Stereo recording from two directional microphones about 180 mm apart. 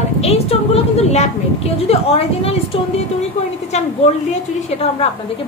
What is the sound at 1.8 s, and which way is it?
A woman's voice, 35° left (ahead or behind).